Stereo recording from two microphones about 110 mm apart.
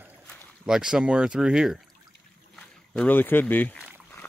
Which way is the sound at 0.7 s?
5° right (ahead or behind).